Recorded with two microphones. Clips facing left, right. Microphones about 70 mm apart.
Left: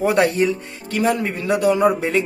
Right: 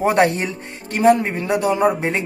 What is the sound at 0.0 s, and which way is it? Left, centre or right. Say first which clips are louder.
Speech: even; right.